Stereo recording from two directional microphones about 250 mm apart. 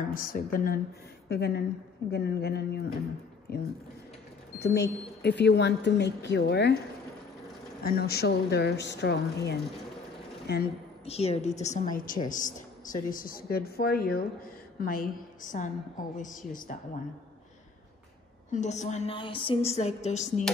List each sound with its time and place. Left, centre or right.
0.1 s a woman's voice: left
7.8 s a woman's voice: left
11.1 s a woman's voice: left
18.5 s a woman's voice: left